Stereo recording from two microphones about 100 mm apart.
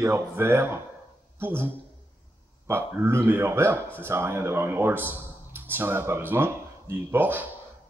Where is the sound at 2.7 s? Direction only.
25° right (ahead or behind).